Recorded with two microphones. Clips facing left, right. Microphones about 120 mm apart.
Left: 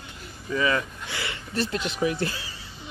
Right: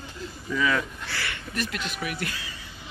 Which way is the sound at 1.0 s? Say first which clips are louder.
Even; 20° left (ahead or behind).